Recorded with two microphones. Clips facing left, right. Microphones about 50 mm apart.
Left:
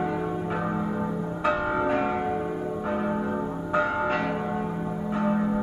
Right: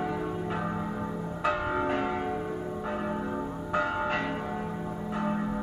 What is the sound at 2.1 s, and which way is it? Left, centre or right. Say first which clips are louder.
Church bell: left 4 dB; centre.